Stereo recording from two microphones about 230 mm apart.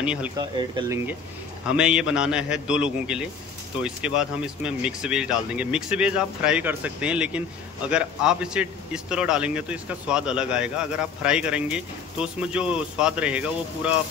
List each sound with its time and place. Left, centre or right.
0.0 s speech: centre
0.4 s a man's voice: centre